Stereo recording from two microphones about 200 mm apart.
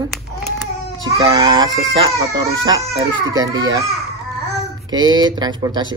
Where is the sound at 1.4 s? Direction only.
20° right (ahead or behind).